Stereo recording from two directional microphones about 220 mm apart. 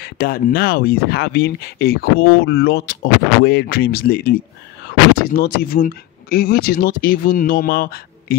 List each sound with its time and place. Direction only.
0.0 s speech: 45° left (ahead or behind)